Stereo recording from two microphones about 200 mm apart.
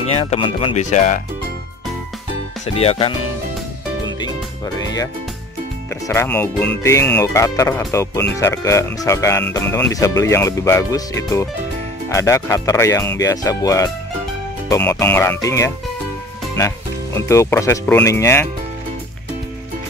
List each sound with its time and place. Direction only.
0.0 s speech: 30° left (ahead or behind)
2.6 s speech: 30° left (ahead or behind)
4.8 s speech: 20° left (ahead or behind)